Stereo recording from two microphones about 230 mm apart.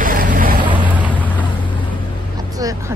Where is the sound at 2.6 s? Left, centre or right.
Centre.